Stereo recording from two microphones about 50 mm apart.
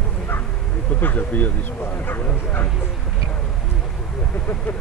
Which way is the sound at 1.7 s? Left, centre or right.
Left.